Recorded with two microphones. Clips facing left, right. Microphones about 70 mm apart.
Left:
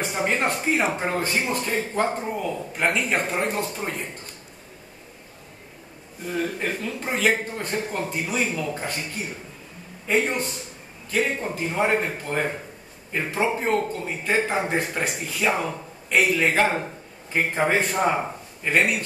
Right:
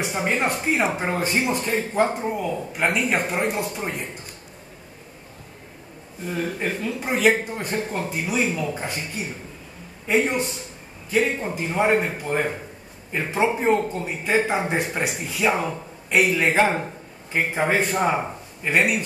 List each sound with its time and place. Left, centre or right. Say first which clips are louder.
0.0 s speech: right 1 dB; centre
1.4 s speech: right 2 dB; centre
6.2 s speech: even; centre
10.0 s speech: right 2 dB; centre
17.3 s speech: even; centre